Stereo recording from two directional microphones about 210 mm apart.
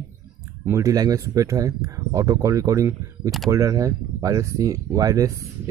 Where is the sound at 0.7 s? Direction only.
15° right (ahead or behind).